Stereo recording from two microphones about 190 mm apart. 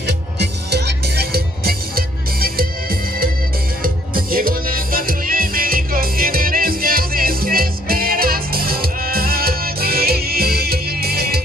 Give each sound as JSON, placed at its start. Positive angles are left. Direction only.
{"t": 0.0, "sound": "music", "side_deg": -60}